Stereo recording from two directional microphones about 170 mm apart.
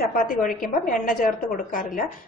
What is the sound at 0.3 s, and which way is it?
A woman's voice, 55° left (ahead or behind).